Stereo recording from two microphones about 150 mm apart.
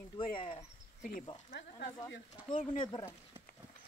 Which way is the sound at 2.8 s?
30° left (ahead or behind).